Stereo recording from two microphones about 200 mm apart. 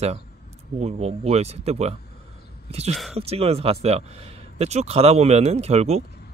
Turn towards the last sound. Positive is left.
turn(degrees=-30)  # may be behind; listen again after turning